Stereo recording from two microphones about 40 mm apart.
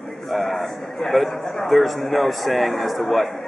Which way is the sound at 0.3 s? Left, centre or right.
Centre.